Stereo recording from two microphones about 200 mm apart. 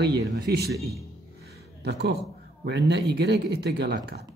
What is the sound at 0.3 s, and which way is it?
Speech, 55° right (ahead or behind).